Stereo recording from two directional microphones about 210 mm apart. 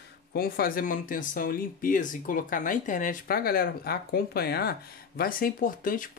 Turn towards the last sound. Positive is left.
turn(degrees=40)  # may be behind; listen again after turning